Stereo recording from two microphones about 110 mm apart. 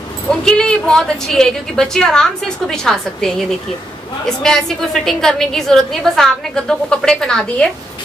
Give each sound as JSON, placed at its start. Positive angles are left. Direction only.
{"t": 0.3, "sound": "a woman's voice", "side_deg": 5}
{"t": 4.4, "sound": "a woman's voice", "side_deg": 5}